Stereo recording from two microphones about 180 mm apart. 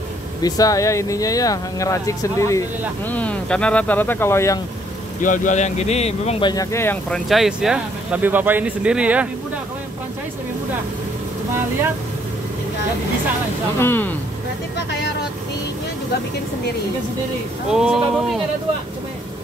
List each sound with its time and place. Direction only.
0.4 s speech: 20° left (ahead or behind)
5.2 s speech: 45° left (ahead or behind)
6.4 s speech: 20° left (ahead or behind)
7.2 s speech: centre (ahead or behind)
13.7 s speech: 10° left (ahead or behind)
17.6 s speech: 5° right (ahead or behind)